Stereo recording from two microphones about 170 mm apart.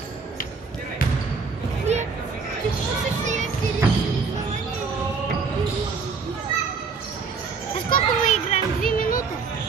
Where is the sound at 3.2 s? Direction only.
45° right (ahead or behind).